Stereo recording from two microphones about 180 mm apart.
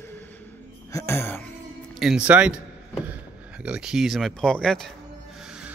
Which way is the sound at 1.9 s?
Centre (ahead or behind).